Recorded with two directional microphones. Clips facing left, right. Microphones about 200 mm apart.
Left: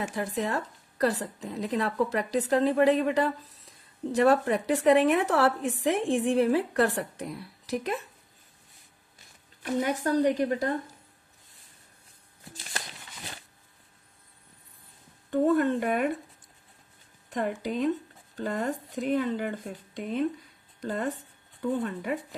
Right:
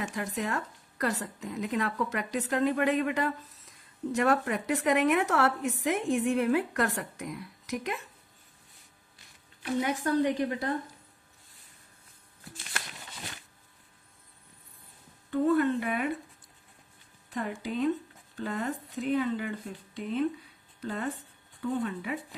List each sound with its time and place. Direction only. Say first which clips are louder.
0.0 s a woman's voice: left 3 dB; 35° left (ahead or behind)
9.6 s speech: left 2 dB; 45° left (ahead or behind)
15.4 s speech: left 1 dB; 45° left (ahead or behind)
17.6 s speech: right 3 dB; 45° left (ahead or behind)